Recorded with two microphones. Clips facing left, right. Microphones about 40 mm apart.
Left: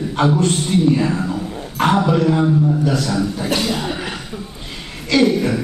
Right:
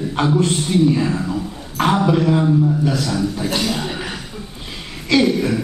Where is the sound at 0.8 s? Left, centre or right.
Centre.